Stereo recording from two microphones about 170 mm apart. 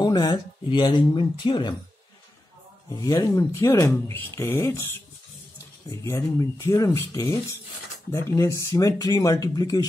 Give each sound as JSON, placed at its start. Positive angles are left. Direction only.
{"t": 0.0, "sound": "speech", "side_deg": 25}
{"t": 3.0, "sound": "speech", "side_deg": 20}
{"t": 5.9, "sound": "speech", "side_deg": 15}